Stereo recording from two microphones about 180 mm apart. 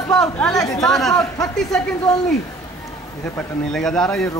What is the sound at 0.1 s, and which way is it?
Speech, 5° left (ahead or behind).